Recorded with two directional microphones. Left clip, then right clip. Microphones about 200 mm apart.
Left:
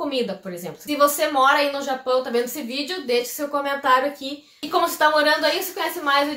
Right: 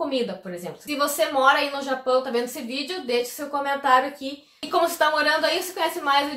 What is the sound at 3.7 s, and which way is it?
A woman's voice, 5° right (ahead or behind).